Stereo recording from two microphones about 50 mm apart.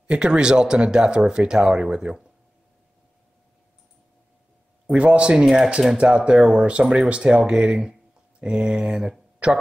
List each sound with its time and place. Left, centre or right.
0.1 s speech: centre
4.8 s speech: right
5.9 s speech: centre
9.4 s speech: right